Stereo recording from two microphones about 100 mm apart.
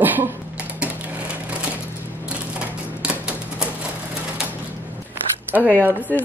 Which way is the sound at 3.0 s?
10° right (ahead or behind).